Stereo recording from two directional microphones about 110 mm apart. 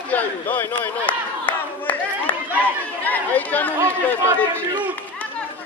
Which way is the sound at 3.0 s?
15° left (ahead or behind).